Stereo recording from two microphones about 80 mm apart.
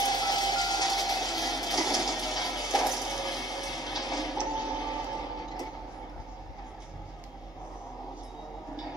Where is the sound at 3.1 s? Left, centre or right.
Left.